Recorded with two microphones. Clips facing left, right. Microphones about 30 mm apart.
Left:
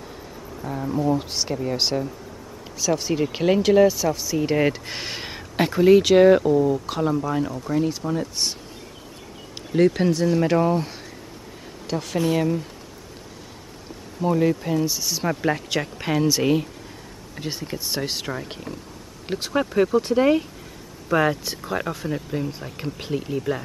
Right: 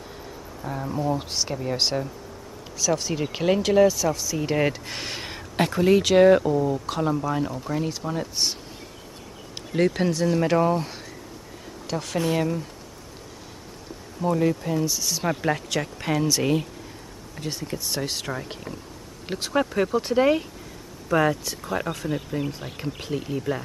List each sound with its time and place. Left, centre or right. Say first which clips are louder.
0.6 s speech: left 3 dB; centre
9.7 s speech: left 4 dB; centre
14.2 s speech: left 2 dB; centre
21.1 s speech: left 1 dB; centre
22.3 s speech: left 1 dB; centre